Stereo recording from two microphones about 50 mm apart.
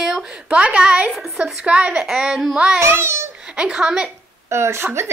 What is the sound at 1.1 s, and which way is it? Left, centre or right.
Speech, centre.